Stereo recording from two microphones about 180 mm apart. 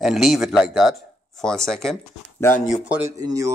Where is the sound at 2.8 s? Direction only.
10° right (ahead or behind).